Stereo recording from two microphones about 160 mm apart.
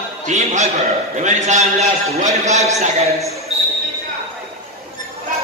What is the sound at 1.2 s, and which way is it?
A man's voice, 50° right (ahead or behind).